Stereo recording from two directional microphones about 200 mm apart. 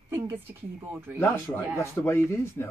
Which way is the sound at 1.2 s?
10° left (ahead or behind).